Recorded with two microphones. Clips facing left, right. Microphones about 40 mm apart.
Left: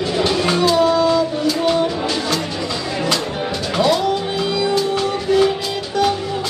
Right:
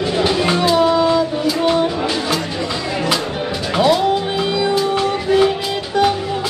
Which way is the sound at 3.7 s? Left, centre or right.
Centre.